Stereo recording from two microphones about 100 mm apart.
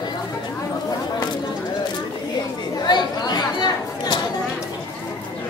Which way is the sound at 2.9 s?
45° left (ahead or behind).